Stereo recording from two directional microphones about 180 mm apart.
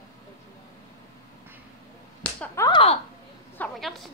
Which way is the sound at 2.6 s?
30° left (ahead or behind).